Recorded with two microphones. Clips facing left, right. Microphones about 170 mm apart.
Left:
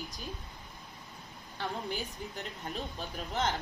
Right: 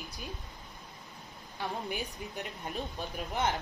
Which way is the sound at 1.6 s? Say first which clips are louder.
Even; 15° right (ahead or behind).